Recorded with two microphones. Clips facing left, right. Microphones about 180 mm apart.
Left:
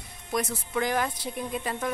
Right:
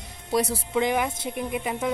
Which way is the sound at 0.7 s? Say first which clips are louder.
Right 3 dB; 15° right (ahead or behind).